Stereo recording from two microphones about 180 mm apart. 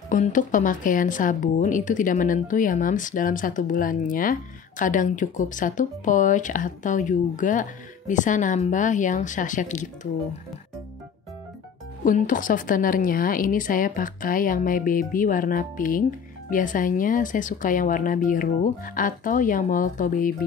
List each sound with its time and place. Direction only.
0.1 s speech: 45° left (ahead or behind)
12.0 s speech: 50° left (ahead or behind)